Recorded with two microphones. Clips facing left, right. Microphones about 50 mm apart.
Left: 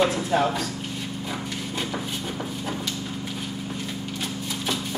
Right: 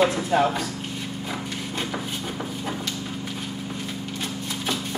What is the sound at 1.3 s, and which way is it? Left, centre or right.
Horse, centre.